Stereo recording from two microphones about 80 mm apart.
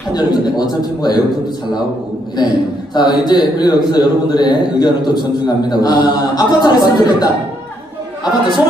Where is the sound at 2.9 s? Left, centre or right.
Left.